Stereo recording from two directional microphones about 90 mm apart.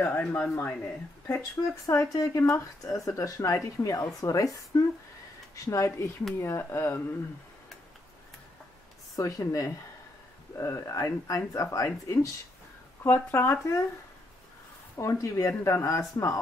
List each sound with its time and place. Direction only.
0.0 s speech: 20° left (ahead or behind)
1.9 s speech: 35° left (ahead or behind)
5.7 s speech: 30° left (ahead or behind)
9.1 s speech: 35° left (ahead or behind)
13.0 s speech: 25° left (ahead or behind)
15.0 s speech: 35° left (ahead or behind)